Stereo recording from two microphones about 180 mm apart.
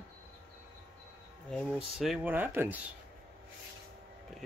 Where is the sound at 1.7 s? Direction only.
5° right (ahead or behind).